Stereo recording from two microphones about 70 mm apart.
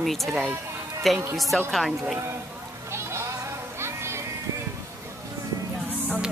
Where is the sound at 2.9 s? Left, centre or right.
Right.